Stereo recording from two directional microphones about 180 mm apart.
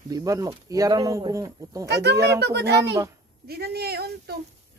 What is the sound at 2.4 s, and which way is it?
A woman's voice, 70° right (ahead or behind).